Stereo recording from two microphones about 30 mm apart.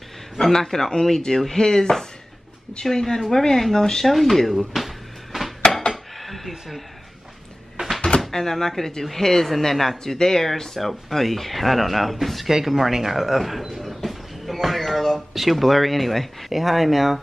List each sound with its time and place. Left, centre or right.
0.4 s a woman's voice: centre
4.0 s speech: centre
4.5 s a sound: centre
8.3 s a woman's voice: centre
12.4 s a sound: centre
14.8 s speech: centre